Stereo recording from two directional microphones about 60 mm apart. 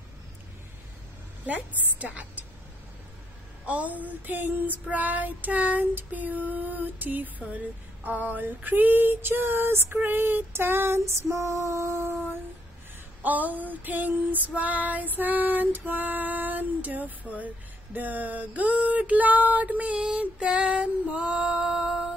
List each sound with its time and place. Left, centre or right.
1.4 s female singing: right
3.6 s female singing: right
9.9 s female singing: right
13.2 s female singing: right; by 22.0 s centre